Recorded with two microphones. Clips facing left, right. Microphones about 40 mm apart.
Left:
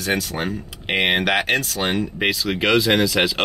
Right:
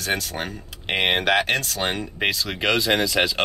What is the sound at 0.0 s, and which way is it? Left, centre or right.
Speech, centre.